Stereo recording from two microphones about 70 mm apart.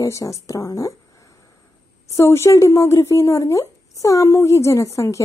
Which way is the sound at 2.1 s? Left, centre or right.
Left.